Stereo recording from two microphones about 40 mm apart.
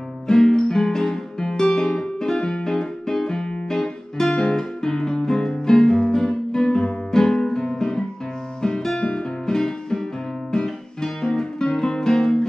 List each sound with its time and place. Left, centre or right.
0.3 s music: centre